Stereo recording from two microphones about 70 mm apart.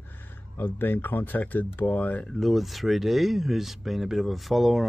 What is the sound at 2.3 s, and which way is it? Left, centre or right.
Speech, centre.